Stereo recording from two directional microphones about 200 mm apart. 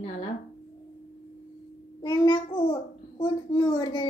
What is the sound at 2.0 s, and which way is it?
A child's voice, 20° left (ahead or behind).